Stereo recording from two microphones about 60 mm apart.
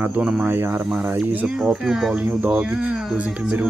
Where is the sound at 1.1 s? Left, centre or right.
Right.